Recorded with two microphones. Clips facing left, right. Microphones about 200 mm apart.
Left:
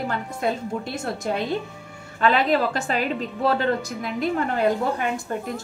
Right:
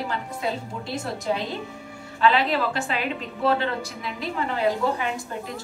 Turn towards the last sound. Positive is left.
turn(degrees=50)  # may be behind; listen again after turning